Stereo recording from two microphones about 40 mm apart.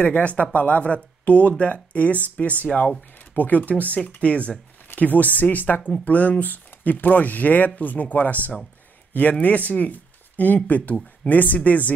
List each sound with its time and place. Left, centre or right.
0.0 s speech: left
4.8 s speech: left